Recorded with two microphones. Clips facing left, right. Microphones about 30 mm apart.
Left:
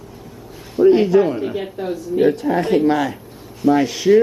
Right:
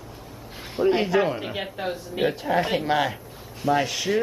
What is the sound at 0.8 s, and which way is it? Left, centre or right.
Speech, centre.